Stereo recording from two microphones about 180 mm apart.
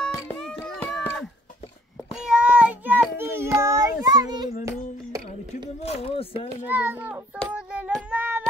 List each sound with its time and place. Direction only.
0.1 s music: 5° left (ahead or behind)
2.1 s child singing: 5° right (ahead or behind); by 4.5 s 20° right (ahead or behind)
5.8 s a sound: 35° left (ahead or behind)
6.6 s a child's voice: 10° right (ahead or behind)
7.5 s child singing: 5° right (ahead or behind)